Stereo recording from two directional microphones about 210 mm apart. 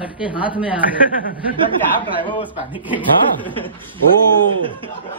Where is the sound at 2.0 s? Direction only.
25° left (ahead or behind).